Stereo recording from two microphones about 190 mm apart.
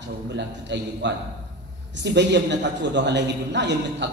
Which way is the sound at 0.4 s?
65° right (ahead or behind).